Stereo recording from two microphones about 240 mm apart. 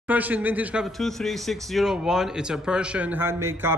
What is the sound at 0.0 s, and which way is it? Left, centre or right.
A man's voice, centre.